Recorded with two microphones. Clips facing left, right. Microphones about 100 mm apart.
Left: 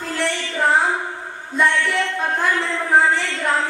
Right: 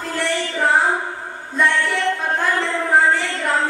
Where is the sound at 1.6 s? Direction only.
Centre (ahead or behind).